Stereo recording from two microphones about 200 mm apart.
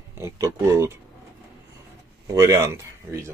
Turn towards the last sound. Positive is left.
turn(degrees=-15)  # may be behind; listen again after turning